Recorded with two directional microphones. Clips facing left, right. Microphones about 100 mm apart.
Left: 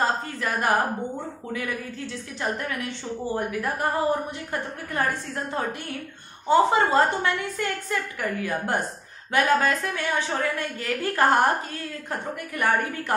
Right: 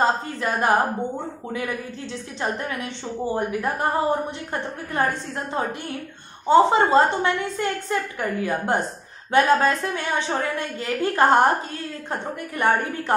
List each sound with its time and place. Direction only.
0.0 s a woman's voice: 25° right (ahead or behind)